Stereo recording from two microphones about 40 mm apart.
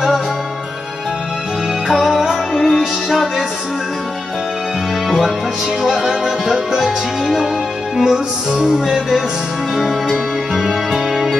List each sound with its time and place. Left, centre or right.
1.9 s music: centre
2.5 s music: centre
2.8 s music: centre
5.9 s music: centre
8.0 s music: centre
9.8 s music: centre
10.1 s music: centre